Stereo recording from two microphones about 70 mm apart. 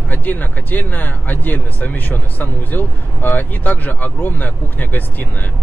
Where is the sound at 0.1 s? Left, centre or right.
Left.